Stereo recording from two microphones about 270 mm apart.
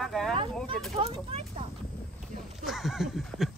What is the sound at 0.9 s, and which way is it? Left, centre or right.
Speech, right.